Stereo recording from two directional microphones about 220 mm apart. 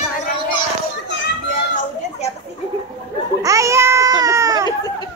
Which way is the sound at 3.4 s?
15° right (ahead or behind).